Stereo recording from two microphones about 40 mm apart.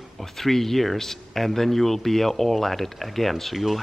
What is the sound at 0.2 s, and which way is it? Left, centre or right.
A man's voice, centre.